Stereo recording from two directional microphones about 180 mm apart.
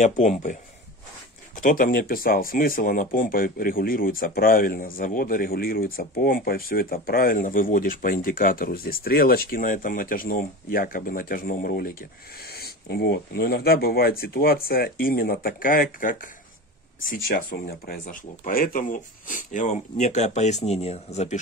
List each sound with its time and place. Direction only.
0.0 s speech: 40° left (ahead or behind)